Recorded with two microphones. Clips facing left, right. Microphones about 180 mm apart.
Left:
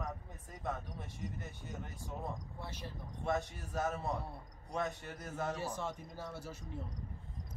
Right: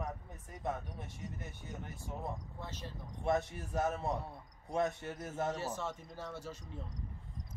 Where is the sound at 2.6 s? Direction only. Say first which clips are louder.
Even; 10° left (ahead or behind).